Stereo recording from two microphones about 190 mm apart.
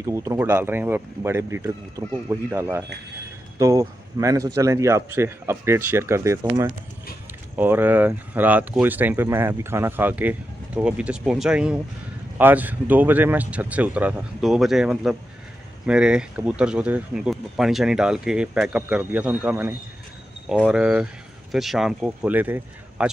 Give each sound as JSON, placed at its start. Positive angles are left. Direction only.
{"t": 0.0, "sound": "speech", "side_deg": -15}
{"t": 7.5, "sound": "speech", "side_deg": -10}